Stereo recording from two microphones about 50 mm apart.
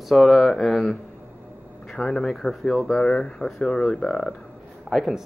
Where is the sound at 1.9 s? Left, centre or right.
Centre.